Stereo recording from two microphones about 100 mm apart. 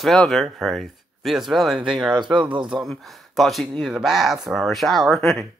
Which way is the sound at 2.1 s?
45° right (ahead or behind).